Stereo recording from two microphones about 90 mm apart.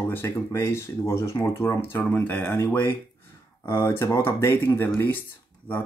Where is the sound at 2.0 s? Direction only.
20° left (ahead or behind).